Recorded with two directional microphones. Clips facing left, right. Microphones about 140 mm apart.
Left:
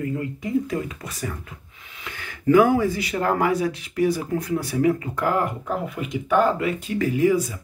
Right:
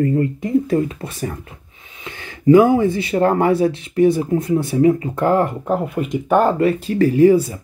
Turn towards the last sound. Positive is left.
turn(degrees=-30)  # may be behind; listen again after turning